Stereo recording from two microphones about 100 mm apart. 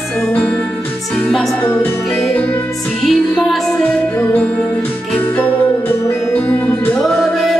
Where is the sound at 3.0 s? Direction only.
Centre (ahead or behind).